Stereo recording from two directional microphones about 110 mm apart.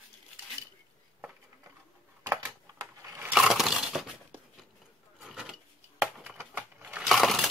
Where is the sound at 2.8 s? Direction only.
30° right (ahead or behind).